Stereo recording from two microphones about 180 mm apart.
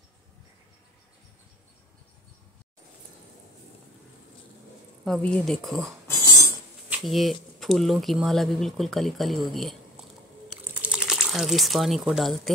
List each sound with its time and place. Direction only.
5.0 s speech: 5° left (ahead or behind)
6.0 s a sound: 20° left (ahead or behind)
6.9 s speech: centre (ahead or behind)
10.5 s crumpling: 5° right (ahead or behind)